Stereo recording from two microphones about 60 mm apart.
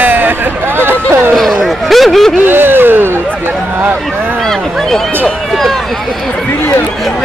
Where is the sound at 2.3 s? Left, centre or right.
Right.